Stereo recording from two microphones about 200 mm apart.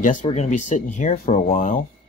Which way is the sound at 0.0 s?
35° left (ahead or behind).